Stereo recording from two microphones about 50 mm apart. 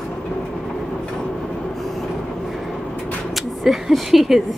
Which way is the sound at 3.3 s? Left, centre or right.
Centre.